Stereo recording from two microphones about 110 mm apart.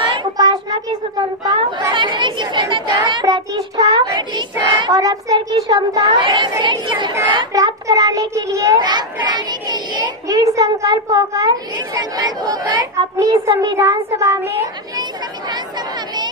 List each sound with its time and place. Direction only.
0.1 s child singing: 40° right (ahead or behind)
1.4 s chatter: 40° right (ahead or behind)
3.5 s child singing: 35° right (ahead or behind)
4.7 s a child's voice: 35° right (ahead or behind)
7.5 s a child's voice: 35° right (ahead or behind)
8.8 s a child's voice: 40° right (ahead or behind)
13.6 s child singing: 30° right (ahead or behind)